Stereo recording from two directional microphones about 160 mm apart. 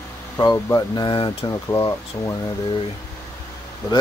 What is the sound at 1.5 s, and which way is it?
Speech, 20° left (ahead or behind).